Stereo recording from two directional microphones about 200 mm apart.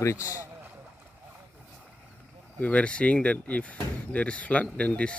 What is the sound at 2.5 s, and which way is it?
Speech, 5° left (ahead or behind).